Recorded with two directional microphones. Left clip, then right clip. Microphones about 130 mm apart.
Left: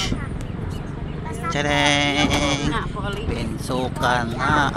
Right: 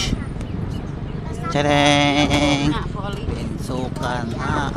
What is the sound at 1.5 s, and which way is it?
Speech, 25° right (ahead or behind).